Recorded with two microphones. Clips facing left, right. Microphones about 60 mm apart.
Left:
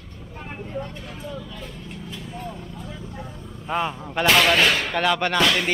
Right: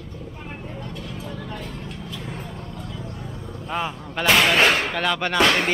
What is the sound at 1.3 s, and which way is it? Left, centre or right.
Vehicle, right.